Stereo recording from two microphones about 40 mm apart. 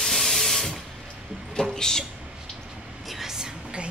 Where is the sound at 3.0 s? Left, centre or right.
Centre.